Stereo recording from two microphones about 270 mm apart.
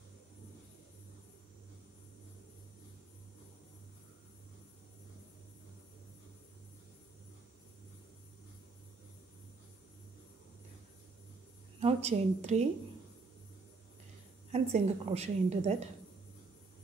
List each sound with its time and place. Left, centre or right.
11.8 s a woman's voice: right
14.5 s a woman's voice: right